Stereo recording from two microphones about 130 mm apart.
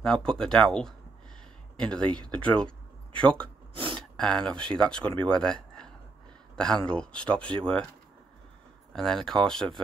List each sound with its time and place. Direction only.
0.0 s a man's voice: 5° left (ahead or behind)
8.9 s speech: 5° left (ahead or behind)